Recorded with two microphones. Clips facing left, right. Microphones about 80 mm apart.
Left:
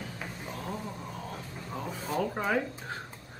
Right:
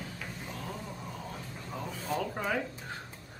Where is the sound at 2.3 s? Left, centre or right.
Centre.